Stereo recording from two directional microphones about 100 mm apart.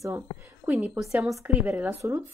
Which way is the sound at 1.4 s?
15° right (ahead or behind).